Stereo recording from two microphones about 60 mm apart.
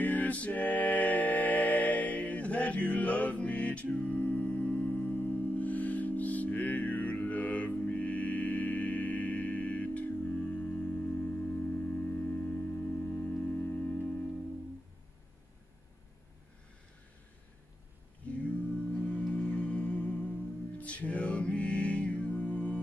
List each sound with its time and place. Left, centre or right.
0.0 s music: left
18.2 s a sound: left
19.0 s music: centre